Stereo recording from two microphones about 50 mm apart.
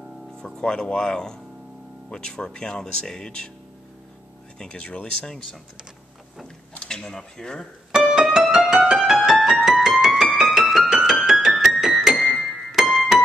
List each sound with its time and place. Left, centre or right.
0.4 s speech: centre
4.6 s speech: left
5.2 s speech: centre
6.8 s speech: centre
7.9 s music: centre
11.1 s piano: centre
12.2 s music: centre